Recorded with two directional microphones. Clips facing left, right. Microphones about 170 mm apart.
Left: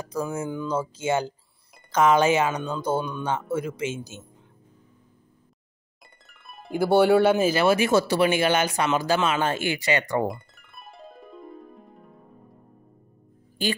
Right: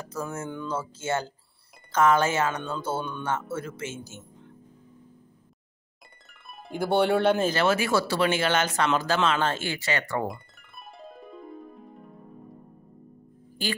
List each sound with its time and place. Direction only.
0.1 s speech: 15° left (ahead or behind)
6.7 s speech: 5° left (ahead or behind)
11.0 s music: centre (ahead or behind)